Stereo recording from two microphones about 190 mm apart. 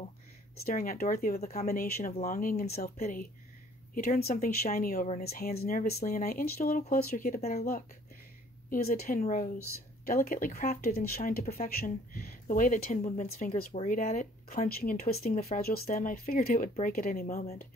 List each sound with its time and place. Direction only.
0.7 s speech: 50° left (ahead or behind)
1.4 s speech: 35° left (ahead or behind); by 7.4 s 50° left (ahead or behind)
8.6 s speech: 50° left (ahead or behind)